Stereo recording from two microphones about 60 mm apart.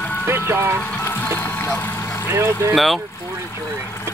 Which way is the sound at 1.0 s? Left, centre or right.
Left.